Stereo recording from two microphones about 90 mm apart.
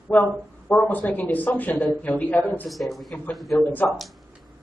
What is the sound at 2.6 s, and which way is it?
Speech, centre (ahead or behind).